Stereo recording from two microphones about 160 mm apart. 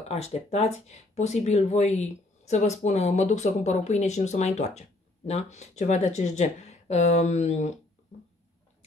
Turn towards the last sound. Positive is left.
turn(degrees=45)  # may be behind; listen again after turning